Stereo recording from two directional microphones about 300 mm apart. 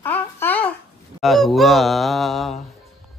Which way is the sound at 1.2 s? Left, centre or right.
Centre.